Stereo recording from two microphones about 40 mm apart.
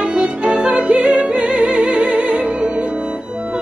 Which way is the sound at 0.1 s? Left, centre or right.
Right.